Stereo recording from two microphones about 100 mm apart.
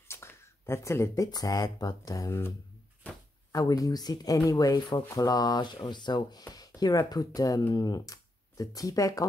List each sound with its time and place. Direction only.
0.1 s speech: 25° left (ahead or behind)
3.5 s speech: 35° left (ahead or behind)